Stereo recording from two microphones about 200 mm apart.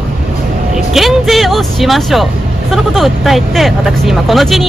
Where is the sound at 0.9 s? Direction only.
Centre (ahead or behind).